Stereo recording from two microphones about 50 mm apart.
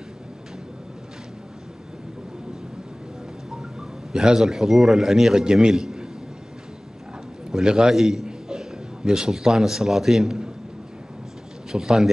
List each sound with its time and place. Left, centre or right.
4.1 s a man's voice: centre
7.5 s a man's voice: centre
7.9 s a man's voice: centre
11.7 s a man's voice: centre